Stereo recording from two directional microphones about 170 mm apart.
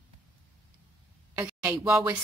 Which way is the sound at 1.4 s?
10° right (ahead or behind).